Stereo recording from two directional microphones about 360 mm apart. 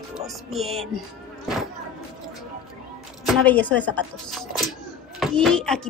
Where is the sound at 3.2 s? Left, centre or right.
Centre.